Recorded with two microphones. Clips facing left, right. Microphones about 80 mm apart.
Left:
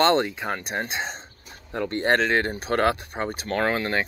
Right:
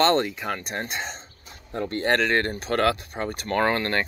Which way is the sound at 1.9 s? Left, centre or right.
Left.